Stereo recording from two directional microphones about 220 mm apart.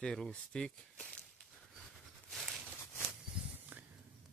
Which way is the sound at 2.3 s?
Centre (ahead or behind).